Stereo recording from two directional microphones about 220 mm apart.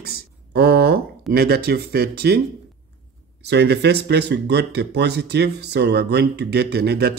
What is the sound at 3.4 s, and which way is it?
Speech, 50° right (ahead or behind).